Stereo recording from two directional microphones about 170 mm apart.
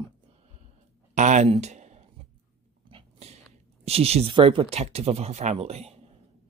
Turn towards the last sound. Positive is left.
turn(degrees=-40)  # may be behind; listen again after turning